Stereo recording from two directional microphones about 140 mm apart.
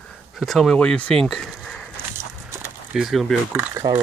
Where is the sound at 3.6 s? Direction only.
20° right (ahead or behind).